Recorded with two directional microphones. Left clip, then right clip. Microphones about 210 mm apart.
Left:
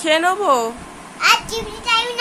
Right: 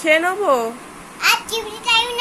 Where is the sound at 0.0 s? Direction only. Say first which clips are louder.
Even; centre (ahead or behind).